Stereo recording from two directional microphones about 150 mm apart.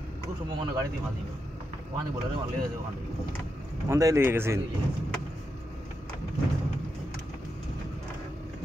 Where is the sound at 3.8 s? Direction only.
20° right (ahead or behind).